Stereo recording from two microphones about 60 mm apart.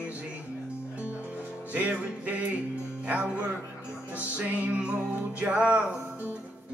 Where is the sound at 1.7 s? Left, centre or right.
Right.